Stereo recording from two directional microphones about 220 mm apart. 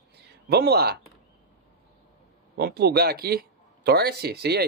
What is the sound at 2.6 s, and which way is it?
Speech, 45° right (ahead or behind).